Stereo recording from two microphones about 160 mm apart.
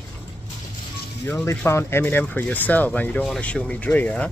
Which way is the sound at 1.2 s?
15° left (ahead or behind).